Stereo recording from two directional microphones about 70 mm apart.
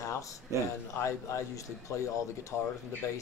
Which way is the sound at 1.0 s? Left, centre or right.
Left.